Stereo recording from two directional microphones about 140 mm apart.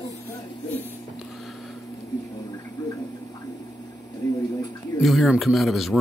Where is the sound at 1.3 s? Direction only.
Centre (ahead or behind).